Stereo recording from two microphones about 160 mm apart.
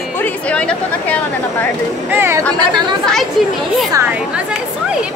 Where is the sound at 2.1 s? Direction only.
15° right (ahead or behind).